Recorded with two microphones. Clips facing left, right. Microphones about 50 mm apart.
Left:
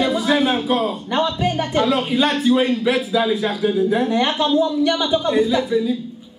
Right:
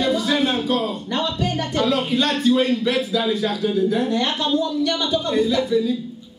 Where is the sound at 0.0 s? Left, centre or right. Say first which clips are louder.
Left 2 dB; centre.